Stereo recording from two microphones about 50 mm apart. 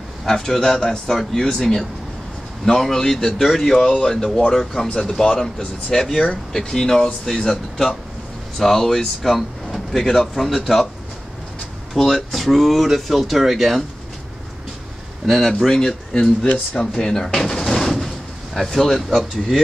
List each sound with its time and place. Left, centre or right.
0.2 s speech: centre
4.8 s speech: left; by 10.9 s centre
11.9 s speech: centre
15.2 s speech: centre
16.7 s drawer open or close: centre